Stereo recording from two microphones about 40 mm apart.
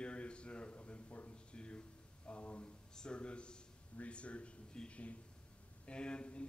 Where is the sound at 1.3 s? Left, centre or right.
Left.